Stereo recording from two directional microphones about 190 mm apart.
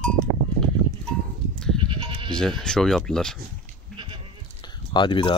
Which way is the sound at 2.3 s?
5° left (ahead or behind).